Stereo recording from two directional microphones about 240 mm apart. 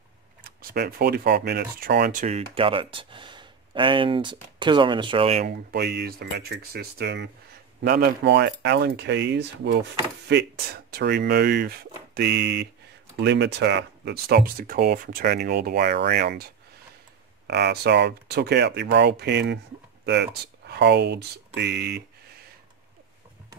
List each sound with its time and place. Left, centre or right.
0.4 s speech: right
2.2 s speech: right
5.4 s speech: right